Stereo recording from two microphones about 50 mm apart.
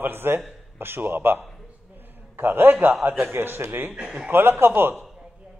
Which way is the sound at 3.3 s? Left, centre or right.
Right.